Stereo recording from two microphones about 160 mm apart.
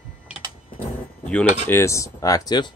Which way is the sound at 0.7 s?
5° left (ahead or behind).